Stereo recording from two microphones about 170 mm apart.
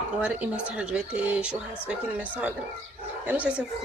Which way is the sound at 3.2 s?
10° right (ahead or behind).